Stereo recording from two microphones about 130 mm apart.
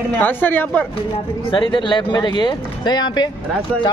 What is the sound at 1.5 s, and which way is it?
Speech, 40° left (ahead or behind).